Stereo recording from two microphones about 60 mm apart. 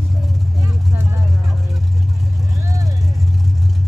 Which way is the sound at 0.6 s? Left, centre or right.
Right.